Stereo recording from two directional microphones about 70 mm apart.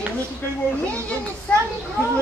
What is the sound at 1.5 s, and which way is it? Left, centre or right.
Speech, centre.